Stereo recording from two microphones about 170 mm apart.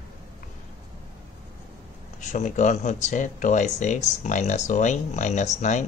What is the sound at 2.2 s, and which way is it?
Speech, 45° left (ahead or behind).